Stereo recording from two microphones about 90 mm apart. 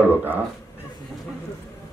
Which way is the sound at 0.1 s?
20° right (ahead or behind).